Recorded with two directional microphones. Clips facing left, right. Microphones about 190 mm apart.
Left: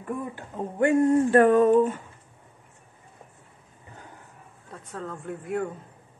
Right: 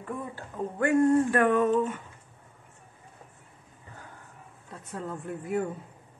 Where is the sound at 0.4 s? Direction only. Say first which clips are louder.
Left 4 dB; 20° left (ahead or behind).